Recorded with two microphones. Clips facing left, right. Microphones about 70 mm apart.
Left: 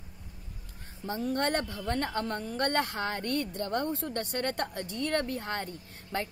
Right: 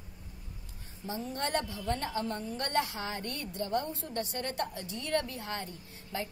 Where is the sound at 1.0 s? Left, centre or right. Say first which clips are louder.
Left 5 dB; left.